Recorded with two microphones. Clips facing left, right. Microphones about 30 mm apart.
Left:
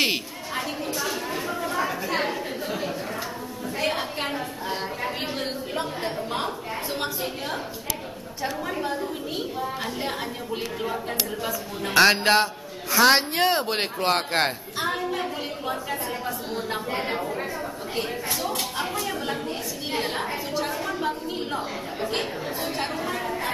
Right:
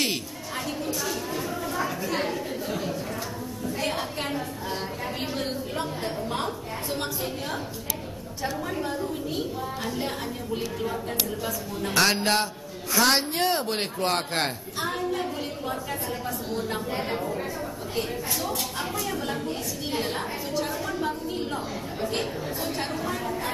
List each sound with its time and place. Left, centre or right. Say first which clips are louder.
0.0 s chatter: left 4 dB; left
3.6 s a woman's voice: left 2 dB; centre
8.6 s a woman's voice: left 1 dB; centre
18.6 s a woman's voice: left 2 dB; centre